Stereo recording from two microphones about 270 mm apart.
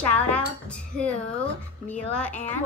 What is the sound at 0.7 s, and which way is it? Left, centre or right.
A woman's voice, centre.